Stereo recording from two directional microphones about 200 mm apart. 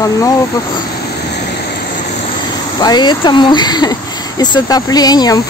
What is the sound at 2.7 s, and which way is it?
Speech, 20° left (ahead or behind).